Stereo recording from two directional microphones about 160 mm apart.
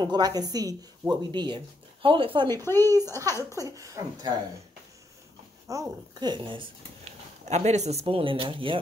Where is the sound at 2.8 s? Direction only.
20° right (ahead or behind).